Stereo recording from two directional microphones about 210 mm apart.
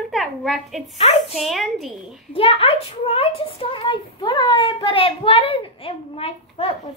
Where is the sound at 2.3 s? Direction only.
25° left (ahead or behind).